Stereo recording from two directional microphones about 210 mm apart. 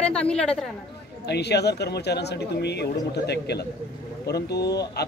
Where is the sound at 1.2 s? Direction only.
50° left (ahead or behind).